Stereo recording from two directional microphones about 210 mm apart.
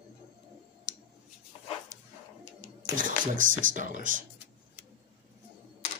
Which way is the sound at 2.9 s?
40° right (ahead or behind).